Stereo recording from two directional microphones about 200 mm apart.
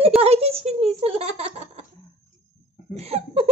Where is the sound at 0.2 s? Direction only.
30° right (ahead or behind).